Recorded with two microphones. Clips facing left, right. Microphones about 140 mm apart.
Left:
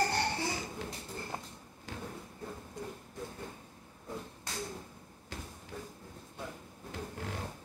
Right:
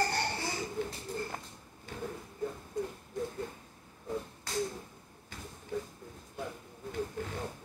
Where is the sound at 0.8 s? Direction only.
90° left.